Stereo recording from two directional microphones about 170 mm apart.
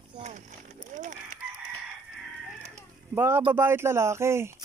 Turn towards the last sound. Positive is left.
turn(degrees=-15)  # may be behind; listen again after turning